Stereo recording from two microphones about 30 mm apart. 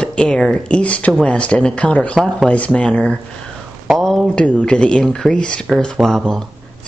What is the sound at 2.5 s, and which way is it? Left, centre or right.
Speech, left.